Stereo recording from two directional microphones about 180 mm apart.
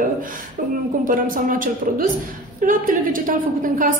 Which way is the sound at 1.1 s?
50° right (ahead or behind).